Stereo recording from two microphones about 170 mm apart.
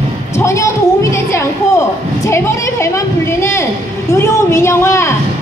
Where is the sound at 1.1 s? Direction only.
15° left (ahead or behind).